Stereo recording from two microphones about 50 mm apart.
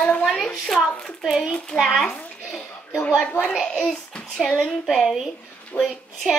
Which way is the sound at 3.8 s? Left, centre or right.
Centre.